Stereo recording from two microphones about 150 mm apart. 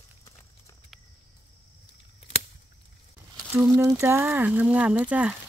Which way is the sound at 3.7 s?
15° right (ahead or behind).